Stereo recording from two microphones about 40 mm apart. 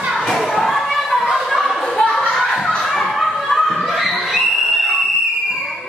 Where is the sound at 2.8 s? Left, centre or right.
Centre.